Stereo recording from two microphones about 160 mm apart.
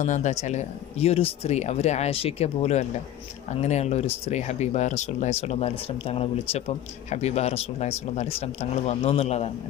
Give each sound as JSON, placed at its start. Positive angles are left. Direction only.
{"t": 0.0, "sound": "speech", "side_deg": 50}